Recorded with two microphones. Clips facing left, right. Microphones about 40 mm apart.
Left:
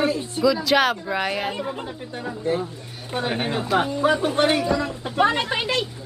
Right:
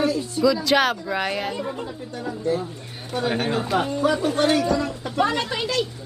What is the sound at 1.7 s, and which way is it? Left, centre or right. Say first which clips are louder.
A woman's voice: even; left.